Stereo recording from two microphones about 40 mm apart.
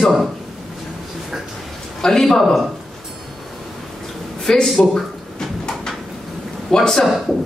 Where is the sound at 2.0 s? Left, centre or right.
Centre.